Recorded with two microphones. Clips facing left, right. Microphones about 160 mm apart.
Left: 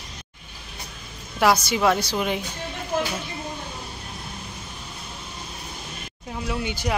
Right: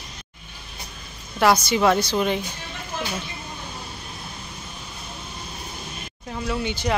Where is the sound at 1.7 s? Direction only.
5° left (ahead or behind).